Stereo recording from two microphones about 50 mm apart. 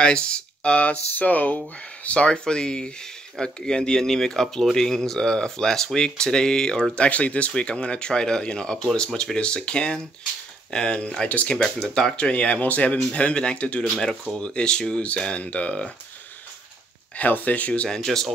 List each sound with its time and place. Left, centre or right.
0.0 s speech: centre
2.0 s speech: left
11.5 s speech: centre
17.2 s speech: left
17.8 s speech: centre